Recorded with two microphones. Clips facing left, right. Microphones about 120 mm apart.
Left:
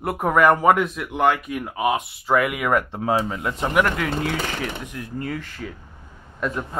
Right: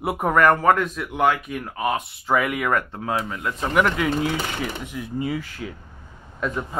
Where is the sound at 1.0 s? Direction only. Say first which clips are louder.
Left 1 dB; centre (ahead or behind).